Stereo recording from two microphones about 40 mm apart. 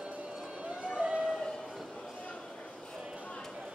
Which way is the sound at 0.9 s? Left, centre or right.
Right.